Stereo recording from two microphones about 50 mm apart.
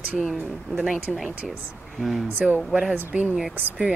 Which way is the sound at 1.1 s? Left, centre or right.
Centre.